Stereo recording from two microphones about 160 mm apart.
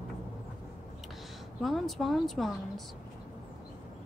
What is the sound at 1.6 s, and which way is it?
Speech, centre (ahead or behind).